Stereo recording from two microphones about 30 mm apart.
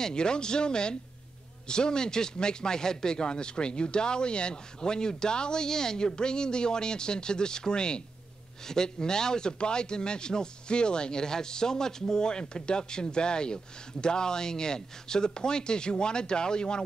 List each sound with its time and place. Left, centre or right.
0.0 s speech: left